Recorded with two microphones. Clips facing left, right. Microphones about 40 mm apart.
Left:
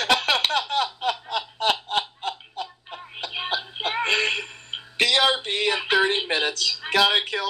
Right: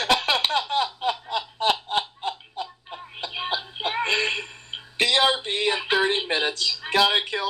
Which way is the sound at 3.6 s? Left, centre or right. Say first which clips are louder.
Left 1 dB; centre.